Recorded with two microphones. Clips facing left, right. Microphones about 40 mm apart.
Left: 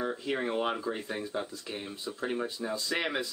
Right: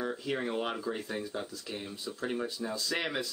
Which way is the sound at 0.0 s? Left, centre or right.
Centre.